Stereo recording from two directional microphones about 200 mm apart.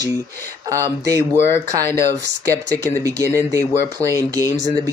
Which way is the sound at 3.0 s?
15° right (ahead or behind).